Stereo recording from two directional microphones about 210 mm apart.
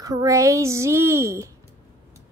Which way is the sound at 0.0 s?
15° right (ahead or behind).